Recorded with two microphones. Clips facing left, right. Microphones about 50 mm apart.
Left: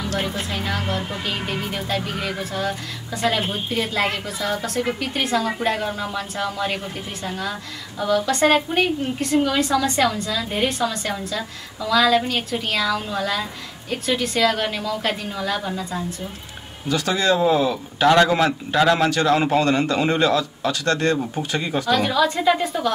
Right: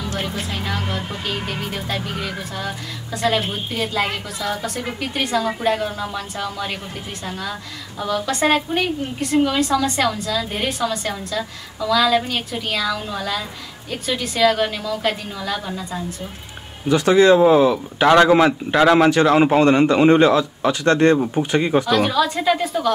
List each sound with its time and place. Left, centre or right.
0.5 s a woman's voice: centre
8.5 s a woman's voice: centre
9.2 s a woman's voice: centre
16.9 s speech: right
22.1 s a woman's voice: centre